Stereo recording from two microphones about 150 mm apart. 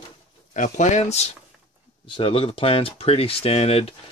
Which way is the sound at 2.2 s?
35° left (ahead or behind).